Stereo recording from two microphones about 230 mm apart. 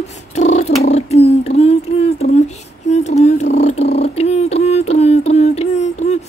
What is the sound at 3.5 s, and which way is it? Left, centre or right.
Purr, left.